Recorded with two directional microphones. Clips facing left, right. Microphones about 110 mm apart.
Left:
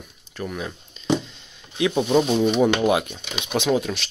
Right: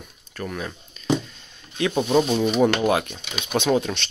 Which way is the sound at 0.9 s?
25° left (ahead or behind).